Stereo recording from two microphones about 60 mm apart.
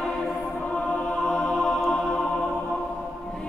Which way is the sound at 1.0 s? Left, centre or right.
Centre.